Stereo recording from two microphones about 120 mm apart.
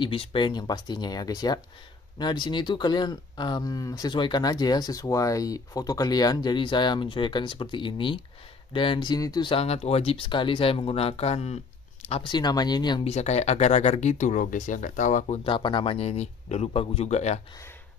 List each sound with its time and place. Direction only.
0.0 s speech: 50° left (ahead or behind)
9.6 s speech: 60° left (ahead or behind)
12.2 s speech: 40° left (ahead or behind)
13.0 s speech: 65° left (ahead or behind); by 15.4 s 80° left
15.4 s speech: 45° left (ahead or behind); by 17.4 s 70° left (ahead or behind)